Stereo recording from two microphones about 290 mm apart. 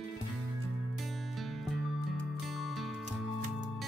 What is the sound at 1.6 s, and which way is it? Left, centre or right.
Music, centre.